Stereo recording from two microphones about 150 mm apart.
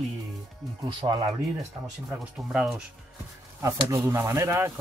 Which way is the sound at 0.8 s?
30° right (ahead or behind).